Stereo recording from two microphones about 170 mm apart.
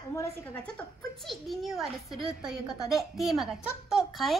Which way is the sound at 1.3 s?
Centre (ahead or behind).